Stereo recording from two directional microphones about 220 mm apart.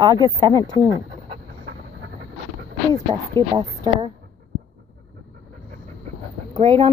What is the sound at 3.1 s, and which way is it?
Speech, 20° right (ahead or behind).